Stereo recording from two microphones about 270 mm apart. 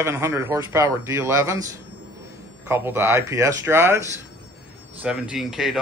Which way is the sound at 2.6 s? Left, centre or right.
Centre.